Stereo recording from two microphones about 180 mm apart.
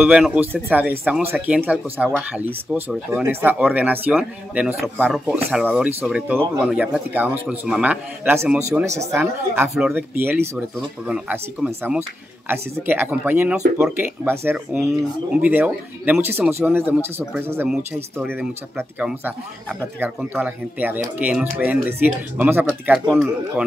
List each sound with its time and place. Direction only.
0.0 s speech: 5° right (ahead or behind)
9.2 s speech: 5° right (ahead or behind)